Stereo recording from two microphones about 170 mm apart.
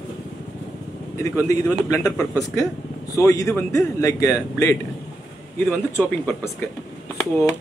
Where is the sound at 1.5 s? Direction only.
20° left (ahead or behind).